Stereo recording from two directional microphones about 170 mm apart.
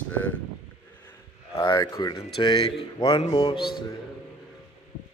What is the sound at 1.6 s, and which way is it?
Speech, 20° left (ahead or behind).